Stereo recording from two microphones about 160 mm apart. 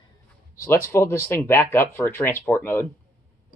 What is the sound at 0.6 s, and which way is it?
Speech, 15° left (ahead or behind).